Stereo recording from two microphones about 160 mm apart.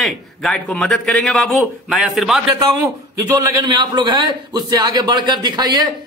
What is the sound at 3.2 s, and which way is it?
A man's voice, 25° right (ahead or behind).